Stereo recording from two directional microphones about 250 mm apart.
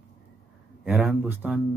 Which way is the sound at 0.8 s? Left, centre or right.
Centre.